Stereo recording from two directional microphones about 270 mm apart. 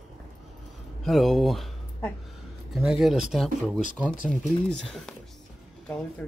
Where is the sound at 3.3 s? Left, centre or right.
Centre.